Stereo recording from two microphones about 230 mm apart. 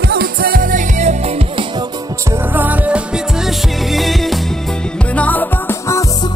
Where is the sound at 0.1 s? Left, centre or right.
Right.